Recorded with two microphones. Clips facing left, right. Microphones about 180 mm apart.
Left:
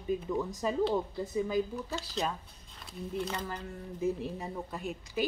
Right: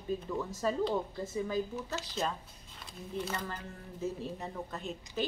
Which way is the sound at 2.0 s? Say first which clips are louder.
Left 1 dB; centre (ahead or behind).